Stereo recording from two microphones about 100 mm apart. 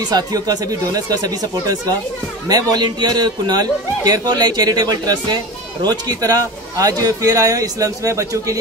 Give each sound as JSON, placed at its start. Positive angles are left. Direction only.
{"t": 0.1, "sound": "a man's voice", "side_deg": -40}